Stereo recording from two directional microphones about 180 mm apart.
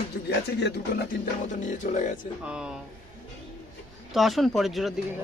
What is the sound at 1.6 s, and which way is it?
Speech, 45° left (ahead or behind).